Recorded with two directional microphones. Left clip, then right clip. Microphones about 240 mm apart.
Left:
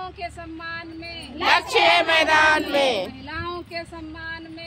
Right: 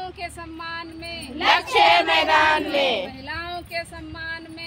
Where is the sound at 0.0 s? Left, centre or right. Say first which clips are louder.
Even; right.